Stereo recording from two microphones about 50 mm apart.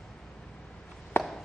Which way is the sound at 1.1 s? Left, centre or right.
Left.